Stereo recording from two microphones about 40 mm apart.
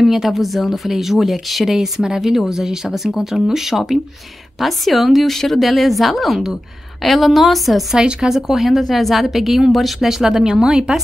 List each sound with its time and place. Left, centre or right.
0.0 s speech: centre
8.0 s speech: right
8.3 s speech: centre
9.9 s speech: centre